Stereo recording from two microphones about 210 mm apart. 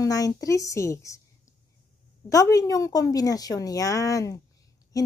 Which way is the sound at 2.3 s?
15° left (ahead or behind).